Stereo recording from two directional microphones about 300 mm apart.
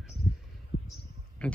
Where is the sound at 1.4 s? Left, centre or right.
Centre.